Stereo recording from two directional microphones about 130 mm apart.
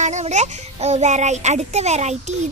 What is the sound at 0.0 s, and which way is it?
Speech, 65° right (ahead or behind).